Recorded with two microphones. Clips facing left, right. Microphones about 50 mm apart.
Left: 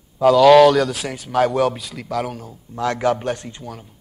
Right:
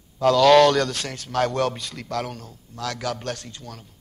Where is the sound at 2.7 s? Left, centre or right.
Left.